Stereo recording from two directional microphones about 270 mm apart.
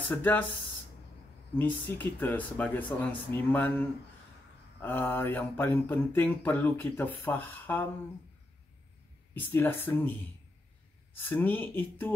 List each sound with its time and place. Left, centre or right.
0.1 s speech: centre
1.6 s mantra: centre
4.8 s mantra: centre
9.3 s mantra: centre
11.1 s mantra: centre